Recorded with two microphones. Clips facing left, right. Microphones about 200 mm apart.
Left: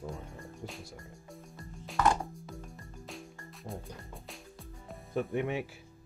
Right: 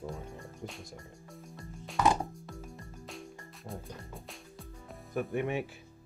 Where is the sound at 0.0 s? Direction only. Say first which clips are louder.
Right 1 dB; centre (ahead or behind).